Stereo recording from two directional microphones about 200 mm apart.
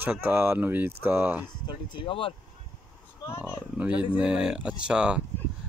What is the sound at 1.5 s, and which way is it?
Speech, 25° left (ahead or behind).